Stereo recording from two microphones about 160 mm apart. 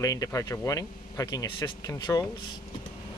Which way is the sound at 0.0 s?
20° left (ahead or behind).